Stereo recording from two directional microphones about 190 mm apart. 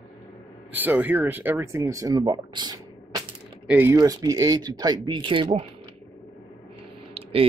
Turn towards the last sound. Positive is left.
turn(degrees=-30)  # may be behind; listen again after turning